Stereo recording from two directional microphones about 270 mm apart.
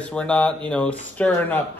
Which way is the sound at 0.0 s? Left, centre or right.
Centre.